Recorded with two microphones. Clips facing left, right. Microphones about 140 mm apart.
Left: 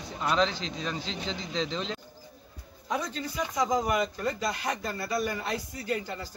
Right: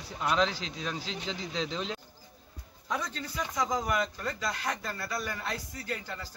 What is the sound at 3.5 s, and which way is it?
Speech, 15° left (ahead or behind).